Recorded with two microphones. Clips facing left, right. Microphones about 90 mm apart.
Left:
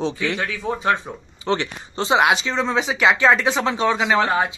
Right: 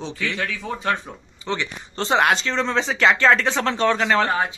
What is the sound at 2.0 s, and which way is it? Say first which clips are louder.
Speech: left 1 dB; 10° left (ahead or behind).